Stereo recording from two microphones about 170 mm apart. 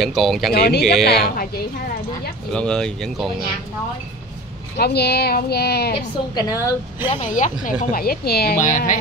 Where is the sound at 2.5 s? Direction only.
5° left (ahead or behind).